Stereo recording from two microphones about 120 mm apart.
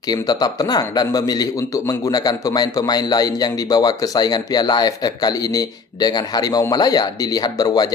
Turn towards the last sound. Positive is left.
turn(degrees=35)  # may be behind; listen again after turning